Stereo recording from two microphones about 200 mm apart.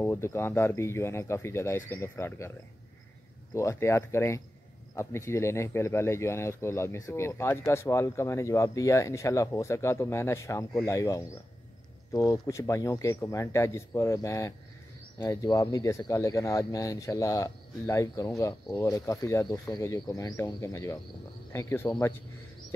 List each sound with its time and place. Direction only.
0.0 s speech: 10° left (ahead or behind)
3.5 s speech: 15° left (ahead or behind)